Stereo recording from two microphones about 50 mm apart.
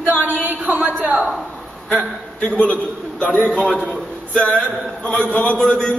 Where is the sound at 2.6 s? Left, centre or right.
Left.